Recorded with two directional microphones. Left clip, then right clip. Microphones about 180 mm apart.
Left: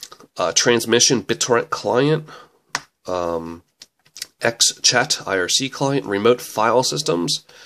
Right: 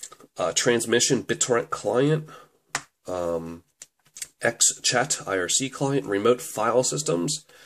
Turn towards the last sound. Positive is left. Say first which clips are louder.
# left 5 dB
turn(degrees=30)  # may be behind; listen again after turning